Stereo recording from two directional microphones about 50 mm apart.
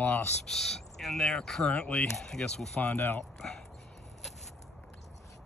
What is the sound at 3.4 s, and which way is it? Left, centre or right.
Speech, centre.